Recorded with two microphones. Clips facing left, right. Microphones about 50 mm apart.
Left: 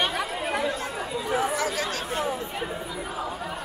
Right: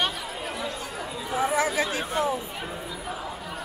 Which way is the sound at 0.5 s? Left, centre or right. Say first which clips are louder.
Left 6 dB; left.